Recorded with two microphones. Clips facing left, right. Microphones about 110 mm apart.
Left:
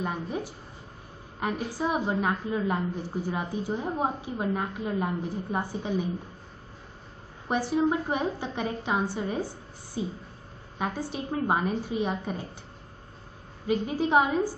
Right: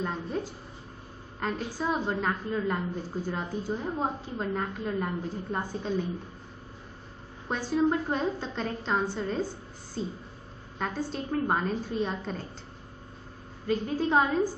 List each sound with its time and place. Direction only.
0.0 s a woman's voice: 15° left (ahead or behind)
7.4 s a woman's voice: 15° left (ahead or behind)
13.7 s a woman's voice: 15° left (ahead or behind)